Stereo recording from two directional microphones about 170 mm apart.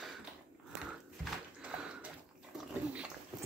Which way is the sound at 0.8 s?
5° right (ahead or behind).